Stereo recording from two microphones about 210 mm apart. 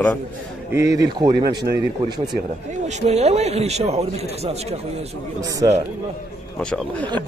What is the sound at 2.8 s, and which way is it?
A man's voice, 30° right (ahead or behind).